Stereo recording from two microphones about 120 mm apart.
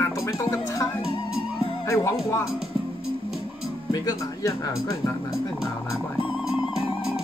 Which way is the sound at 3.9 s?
35° left (ahead or behind).